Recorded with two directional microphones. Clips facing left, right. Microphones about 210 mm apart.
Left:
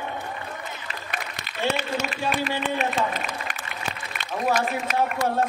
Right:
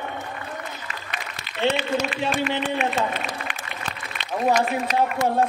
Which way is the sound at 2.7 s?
40° left (ahead or behind).